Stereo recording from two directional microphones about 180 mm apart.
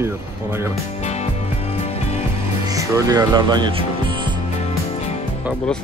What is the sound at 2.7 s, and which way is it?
Speech, 20° right (ahead or behind).